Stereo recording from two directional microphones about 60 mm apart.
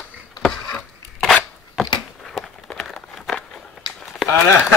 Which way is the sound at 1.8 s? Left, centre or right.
Centre.